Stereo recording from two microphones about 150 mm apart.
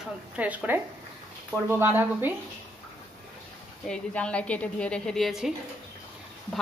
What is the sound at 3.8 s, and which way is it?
A woman's voice, 5° left (ahead or behind).